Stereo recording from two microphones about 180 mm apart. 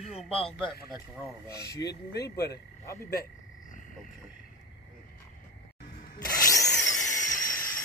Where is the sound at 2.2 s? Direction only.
65° left (ahead or behind).